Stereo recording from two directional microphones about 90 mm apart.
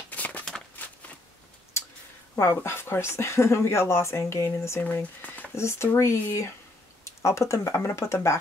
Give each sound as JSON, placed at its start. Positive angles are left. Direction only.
{"t": 0.1, "sound": "a sound", "side_deg": 15}
{"t": 2.3, "sound": "speech", "side_deg": 30}
{"t": 4.8, "sound": "speech", "side_deg": 20}
{"t": 5.6, "sound": "speech", "side_deg": 30}